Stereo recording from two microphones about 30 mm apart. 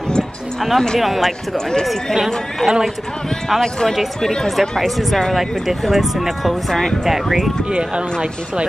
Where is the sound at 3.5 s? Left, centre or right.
Centre.